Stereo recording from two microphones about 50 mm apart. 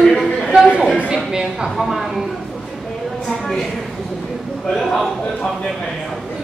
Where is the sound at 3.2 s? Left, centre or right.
Centre.